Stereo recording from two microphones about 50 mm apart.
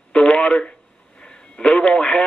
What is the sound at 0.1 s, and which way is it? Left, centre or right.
Radio, centre.